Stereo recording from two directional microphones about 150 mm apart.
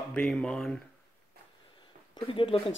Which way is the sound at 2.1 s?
35° left (ahead or behind).